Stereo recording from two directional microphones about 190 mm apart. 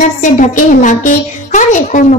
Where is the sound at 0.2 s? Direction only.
40° left (ahead or behind).